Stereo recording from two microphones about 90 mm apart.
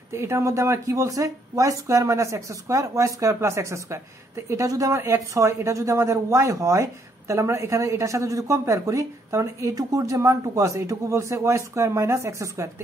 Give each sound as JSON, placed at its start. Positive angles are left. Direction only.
{"t": 0.1, "sound": "a woman's voice", "side_deg": -30}